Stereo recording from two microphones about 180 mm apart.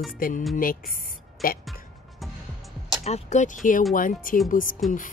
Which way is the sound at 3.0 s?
40° left (ahead or behind).